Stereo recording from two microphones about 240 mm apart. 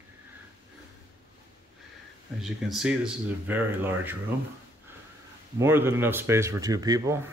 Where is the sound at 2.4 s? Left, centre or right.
Centre.